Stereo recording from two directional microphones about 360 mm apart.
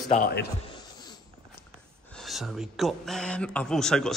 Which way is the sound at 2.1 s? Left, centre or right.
Centre.